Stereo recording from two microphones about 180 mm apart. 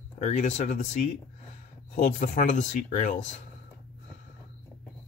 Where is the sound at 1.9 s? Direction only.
45° left (ahead or behind).